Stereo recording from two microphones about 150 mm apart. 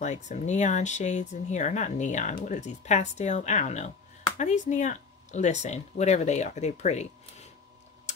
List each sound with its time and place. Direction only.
0.0 s speech: 50° left (ahead or behind)